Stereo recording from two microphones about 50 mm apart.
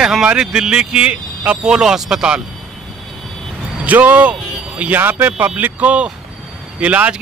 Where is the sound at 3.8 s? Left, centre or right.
Right.